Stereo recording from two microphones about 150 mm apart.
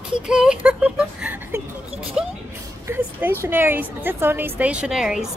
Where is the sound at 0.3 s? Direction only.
5° right (ahead or behind).